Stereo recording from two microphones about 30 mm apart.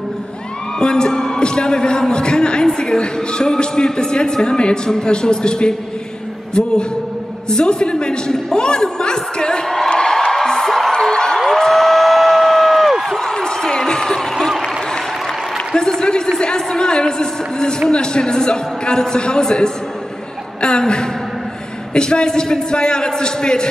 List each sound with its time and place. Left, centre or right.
0.7 s a man's voice: left
7.4 s a woman's voice: left
9.8 s music: left
11.0 s a sound: centre
13.2 s a sound: left
15.5 s a man's voice: centre